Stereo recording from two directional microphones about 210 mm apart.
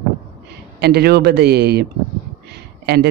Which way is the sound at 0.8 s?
50° right (ahead or behind).